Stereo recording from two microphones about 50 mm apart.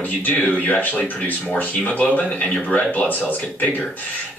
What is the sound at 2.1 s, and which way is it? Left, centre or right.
Speech, left.